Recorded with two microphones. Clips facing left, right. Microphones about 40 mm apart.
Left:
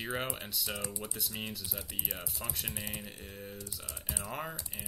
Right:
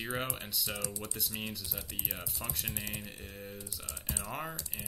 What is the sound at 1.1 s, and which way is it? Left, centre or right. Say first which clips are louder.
Speech: even; centre.